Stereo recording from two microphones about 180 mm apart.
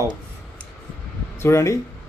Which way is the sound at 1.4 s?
15° left (ahead or behind).